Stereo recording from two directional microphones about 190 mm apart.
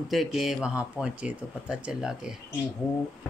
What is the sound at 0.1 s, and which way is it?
Speech, centre (ahead or behind).